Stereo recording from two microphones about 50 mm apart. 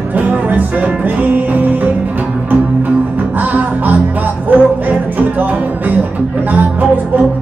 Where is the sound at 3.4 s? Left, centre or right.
Right.